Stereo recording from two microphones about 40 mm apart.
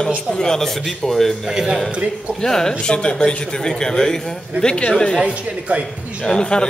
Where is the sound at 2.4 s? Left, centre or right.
Centre.